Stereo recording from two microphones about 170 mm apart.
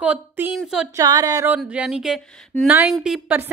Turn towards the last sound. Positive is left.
turn(degrees=-10)  # may be behind; listen again after turning